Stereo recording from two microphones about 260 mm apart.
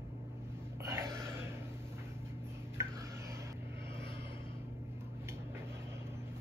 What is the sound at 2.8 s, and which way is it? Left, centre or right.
Rub, centre.